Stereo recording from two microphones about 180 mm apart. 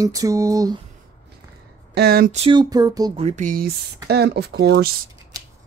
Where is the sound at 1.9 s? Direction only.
60° right (ahead or behind).